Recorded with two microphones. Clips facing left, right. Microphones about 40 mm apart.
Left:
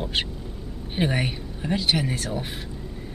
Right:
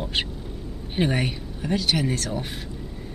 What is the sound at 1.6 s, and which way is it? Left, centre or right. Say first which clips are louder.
Speech: even; centre.